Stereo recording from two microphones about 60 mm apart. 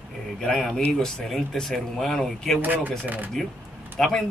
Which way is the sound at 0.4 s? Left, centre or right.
Centre.